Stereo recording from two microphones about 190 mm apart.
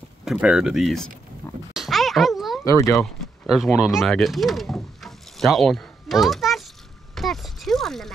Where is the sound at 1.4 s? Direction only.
10° left (ahead or behind).